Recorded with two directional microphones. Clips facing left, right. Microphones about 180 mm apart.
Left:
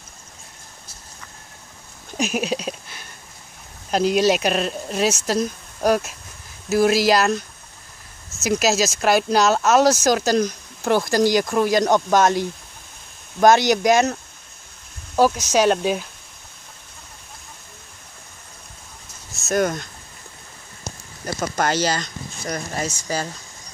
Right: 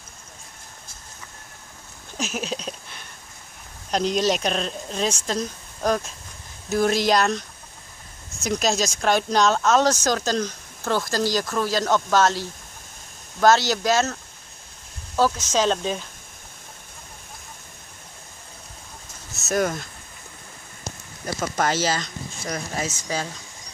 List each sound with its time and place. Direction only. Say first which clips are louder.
2.1 s a sound: left 6 dB; 15° left (ahead or behind)
3.9 s speech: left 4 dB; 5° left (ahead or behind)
15.1 s speech: left 4 dB; 10° left (ahead or behind)
19.3 s speech: left 2 dB; centre (ahead or behind)
21.4 s speech: left 2 dB; centre (ahead or behind)